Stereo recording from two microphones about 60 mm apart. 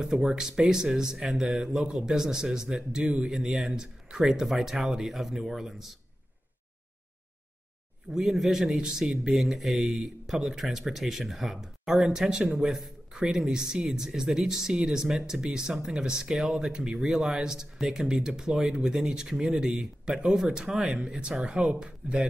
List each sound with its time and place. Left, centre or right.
0.0 s speech: centre
8.1 s speech: centre